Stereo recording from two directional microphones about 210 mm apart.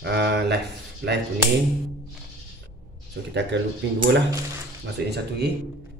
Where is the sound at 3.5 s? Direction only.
60° right (ahead or behind).